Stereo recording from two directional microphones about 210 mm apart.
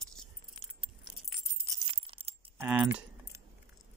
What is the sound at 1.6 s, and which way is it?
Jingle bell, 15° right (ahead or behind).